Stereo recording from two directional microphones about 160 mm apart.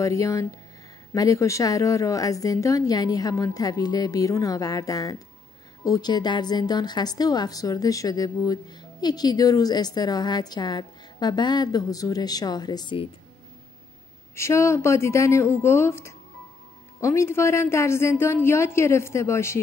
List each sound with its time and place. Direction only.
0.0 s a woman's voice: 20° left (ahead or behind)
14.3 s a woman's voice: 15° left (ahead or behind)